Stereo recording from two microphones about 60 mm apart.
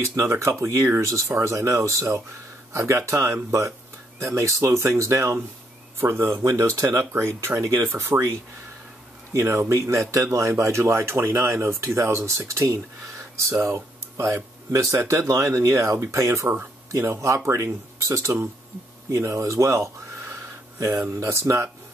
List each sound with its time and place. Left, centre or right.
0.0 s speech: right
5.9 s speech: right
6.4 s speech: right
7.1 s speech: right
9.3 s speech: right
12.6 s speech: right
13.7 s speech: right
19.0 s speech: right